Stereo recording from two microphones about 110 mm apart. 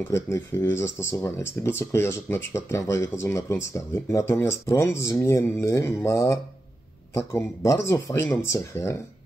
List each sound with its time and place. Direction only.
0.1 s speech: 25° left (ahead or behind)